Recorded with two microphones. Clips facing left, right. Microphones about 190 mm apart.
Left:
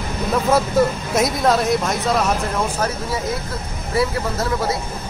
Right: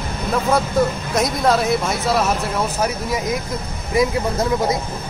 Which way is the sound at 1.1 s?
Centre (ahead or behind).